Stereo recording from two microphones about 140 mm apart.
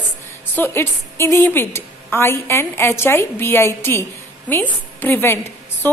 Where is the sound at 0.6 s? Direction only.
15° left (ahead or behind).